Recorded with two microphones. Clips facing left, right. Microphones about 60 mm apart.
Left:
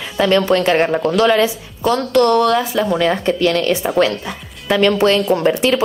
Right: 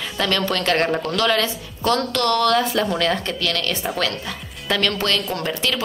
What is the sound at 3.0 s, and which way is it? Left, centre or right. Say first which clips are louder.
A woman's voice: left 6 dB; centre.